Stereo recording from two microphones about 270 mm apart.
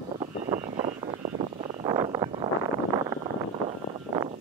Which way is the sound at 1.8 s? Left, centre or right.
Centre.